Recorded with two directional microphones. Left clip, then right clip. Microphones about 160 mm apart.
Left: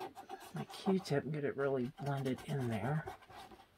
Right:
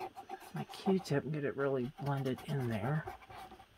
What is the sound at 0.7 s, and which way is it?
Speech, 35° right (ahead or behind).